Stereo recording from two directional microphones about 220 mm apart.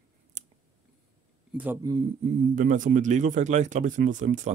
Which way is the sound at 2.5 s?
35° right (ahead or behind).